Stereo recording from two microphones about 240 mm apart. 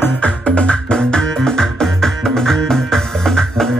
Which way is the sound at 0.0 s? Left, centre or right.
Centre.